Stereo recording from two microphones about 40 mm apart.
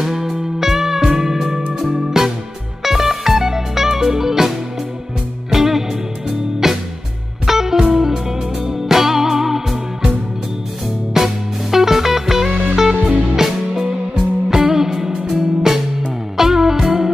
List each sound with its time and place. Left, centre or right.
0.0 s music: centre
11.1 s music: centre
13.1 s music: right
13.4 s music: centre